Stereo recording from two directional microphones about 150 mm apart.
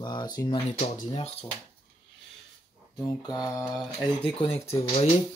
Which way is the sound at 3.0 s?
25° left (ahead or behind).